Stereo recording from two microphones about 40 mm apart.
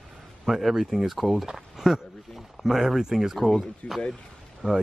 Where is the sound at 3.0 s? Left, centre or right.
Centre.